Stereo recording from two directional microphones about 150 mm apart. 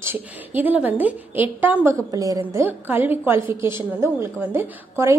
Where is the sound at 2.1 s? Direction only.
25° right (ahead or behind).